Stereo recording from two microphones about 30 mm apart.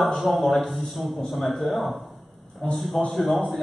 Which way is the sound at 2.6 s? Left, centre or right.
Left.